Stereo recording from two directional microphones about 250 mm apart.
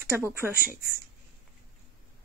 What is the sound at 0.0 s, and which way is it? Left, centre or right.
Speech, centre.